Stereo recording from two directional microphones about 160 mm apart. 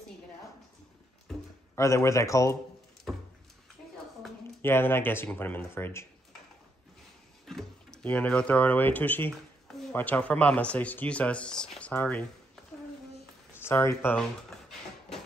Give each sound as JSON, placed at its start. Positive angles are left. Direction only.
{"t": 1.3, "sound": "a sound", "side_deg": 0}
{"t": 1.8, "sound": "a man's voice", "side_deg": 20}
{"t": 4.6, "sound": "speech", "side_deg": 15}
{"t": 7.4, "sound": "speech", "side_deg": 5}
{"t": 13.7, "sound": "speech", "side_deg": 15}